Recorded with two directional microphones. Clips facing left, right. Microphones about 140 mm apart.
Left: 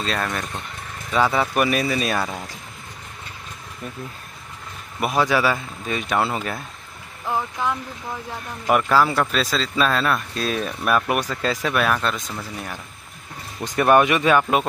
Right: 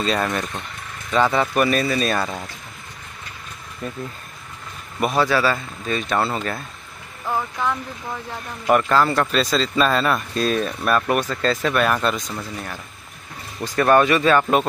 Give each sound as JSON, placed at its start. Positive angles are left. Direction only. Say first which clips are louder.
{"t": 0.0, "sound": "speech", "louder": "right 4 dB", "side_deg": 0}
{"t": 3.8, "sound": "speech", "louder": "right 4 dB", "side_deg": 10}
{"t": 5.0, "sound": "speech", "louder": "right 1 dB", "side_deg": 15}
{"t": 13.7, "sound": "speech", "louder": "even", "side_deg": 15}